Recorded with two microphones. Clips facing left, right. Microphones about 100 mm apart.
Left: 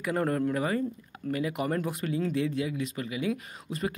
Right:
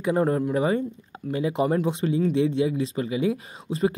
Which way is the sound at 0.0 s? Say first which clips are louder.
Right 5 dB; 20° right (ahead or behind).